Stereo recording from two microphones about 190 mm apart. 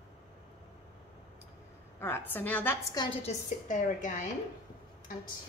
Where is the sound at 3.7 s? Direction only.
40° left (ahead or behind).